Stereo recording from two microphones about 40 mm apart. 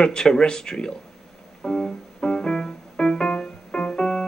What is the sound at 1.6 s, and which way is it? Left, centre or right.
Music, centre.